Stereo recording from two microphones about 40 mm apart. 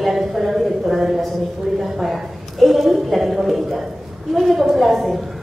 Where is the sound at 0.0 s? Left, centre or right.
Centre.